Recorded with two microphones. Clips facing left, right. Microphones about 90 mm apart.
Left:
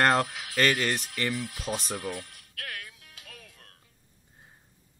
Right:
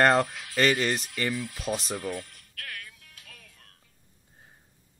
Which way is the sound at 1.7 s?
5° left (ahead or behind).